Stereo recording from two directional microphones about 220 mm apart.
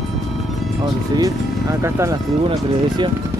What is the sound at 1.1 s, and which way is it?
Speech, 15° right (ahead or behind).